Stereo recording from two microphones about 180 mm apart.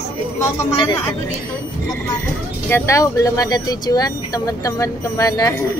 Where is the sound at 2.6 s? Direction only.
15° left (ahead or behind).